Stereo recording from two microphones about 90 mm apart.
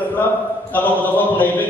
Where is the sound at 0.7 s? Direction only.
20° left (ahead or behind).